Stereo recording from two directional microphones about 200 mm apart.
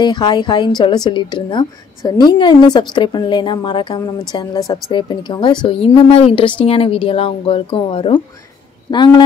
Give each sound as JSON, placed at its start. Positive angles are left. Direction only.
{"t": 0.0, "sound": "a woman's voice", "side_deg": 20}